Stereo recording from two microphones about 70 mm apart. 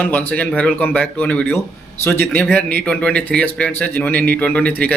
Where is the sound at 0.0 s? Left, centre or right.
Left.